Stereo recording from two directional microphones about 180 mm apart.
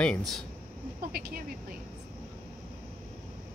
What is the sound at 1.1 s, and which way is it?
Speech, 55° right (ahead or behind).